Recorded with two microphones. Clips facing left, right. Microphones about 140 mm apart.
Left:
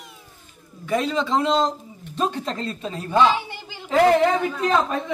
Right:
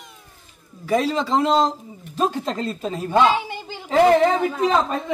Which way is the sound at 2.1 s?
5° right (ahead or behind).